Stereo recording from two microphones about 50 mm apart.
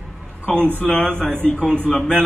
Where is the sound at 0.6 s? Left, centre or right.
Left.